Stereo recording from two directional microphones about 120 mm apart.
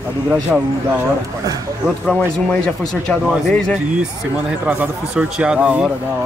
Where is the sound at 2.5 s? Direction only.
10° left (ahead or behind).